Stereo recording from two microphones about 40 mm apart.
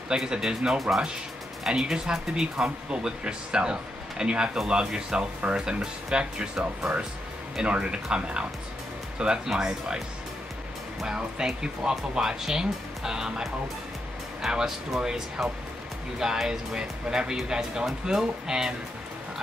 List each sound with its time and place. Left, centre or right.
0.1 s speech: right
0.7 s speech: centre
1.7 s speech: centre
11.1 s speech: centre
14.4 s speech: centre
15.0 s speech: right